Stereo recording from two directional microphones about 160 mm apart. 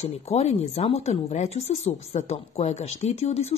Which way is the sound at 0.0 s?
40° left (ahead or behind).